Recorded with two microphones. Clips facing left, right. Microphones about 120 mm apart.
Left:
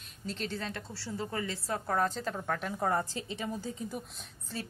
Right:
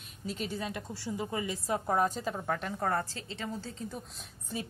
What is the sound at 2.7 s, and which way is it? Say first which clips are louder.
A woman's voice: left 1 dB; 10° left (ahead or behind).